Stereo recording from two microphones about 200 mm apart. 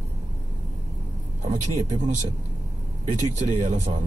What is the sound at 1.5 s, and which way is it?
Speech, 40° right (ahead or behind).